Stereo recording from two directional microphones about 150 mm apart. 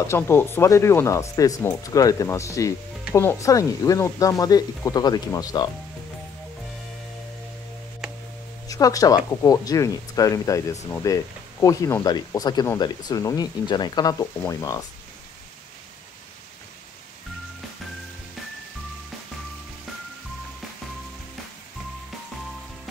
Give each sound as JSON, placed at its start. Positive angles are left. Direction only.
{"t": 0.0, "sound": "speech", "side_deg": 15}
{"t": 8.6, "sound": "speech", "side_deg": 25}